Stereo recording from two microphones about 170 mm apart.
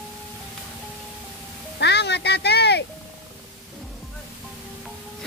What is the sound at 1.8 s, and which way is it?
Music, 85° left.